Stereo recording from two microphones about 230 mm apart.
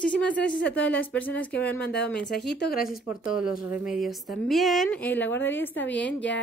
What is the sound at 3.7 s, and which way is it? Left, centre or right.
Speech, centre.